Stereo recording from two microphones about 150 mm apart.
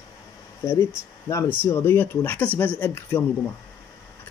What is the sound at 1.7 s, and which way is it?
Speech, 15° left (ahead or behind).